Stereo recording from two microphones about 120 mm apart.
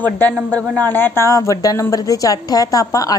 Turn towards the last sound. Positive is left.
turn(degrees=30)  # may be behind; listen again after turning